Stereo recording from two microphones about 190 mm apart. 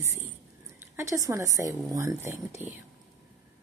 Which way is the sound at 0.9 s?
15° right (ahead or behind).